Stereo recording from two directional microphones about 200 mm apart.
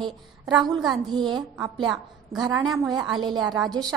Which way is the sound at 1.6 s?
20° right (ahead or behind).